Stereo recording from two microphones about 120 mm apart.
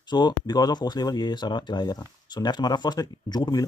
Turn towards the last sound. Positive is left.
turn(degrees=35)  # may be behind; listen again after turning